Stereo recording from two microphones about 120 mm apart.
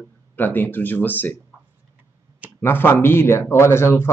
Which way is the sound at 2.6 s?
15° left (ahead or behind).